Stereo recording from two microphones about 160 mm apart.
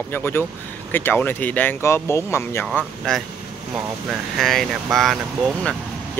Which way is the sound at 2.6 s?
5° left (ahead or behind).